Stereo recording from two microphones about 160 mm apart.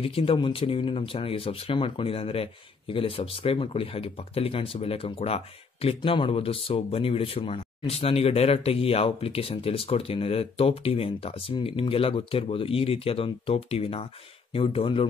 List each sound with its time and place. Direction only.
0.0 s speech: 35° left (ahead or behind)